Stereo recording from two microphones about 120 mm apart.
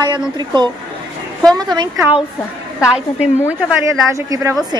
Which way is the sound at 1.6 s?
35° right (ahead or behind).